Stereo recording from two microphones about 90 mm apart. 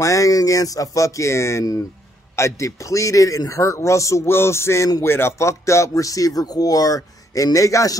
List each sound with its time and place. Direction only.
0.0 s speech: 40° left (ahead or behind)